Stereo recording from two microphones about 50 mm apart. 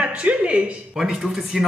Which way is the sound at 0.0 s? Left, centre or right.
Right.